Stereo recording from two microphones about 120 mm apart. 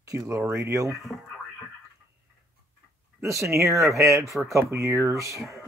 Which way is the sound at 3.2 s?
25° right (ahead or behind).